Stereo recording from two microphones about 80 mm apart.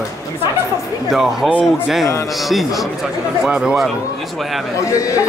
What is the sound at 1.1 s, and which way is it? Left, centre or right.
Speech, centre.